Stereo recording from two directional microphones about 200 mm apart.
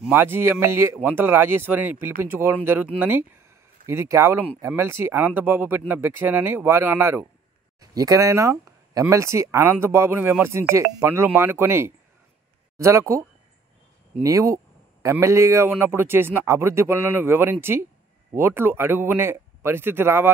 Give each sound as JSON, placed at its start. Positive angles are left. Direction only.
{"t": 0.0, "sound": "speech", "side_deg": -10}
{"t": 14.2, "sound": "speech", "side_deg": -15}